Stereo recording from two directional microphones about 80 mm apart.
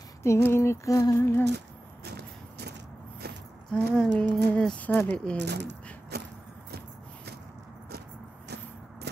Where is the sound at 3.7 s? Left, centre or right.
Centre.